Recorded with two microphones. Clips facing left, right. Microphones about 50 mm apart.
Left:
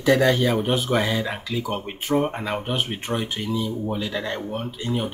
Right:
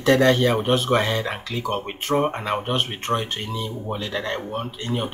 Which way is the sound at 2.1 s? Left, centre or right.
Right.